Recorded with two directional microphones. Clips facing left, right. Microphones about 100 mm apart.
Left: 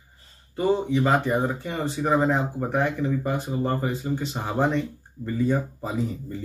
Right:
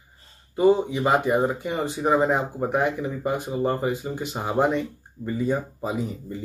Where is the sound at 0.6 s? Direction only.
15° right (ahead or behind).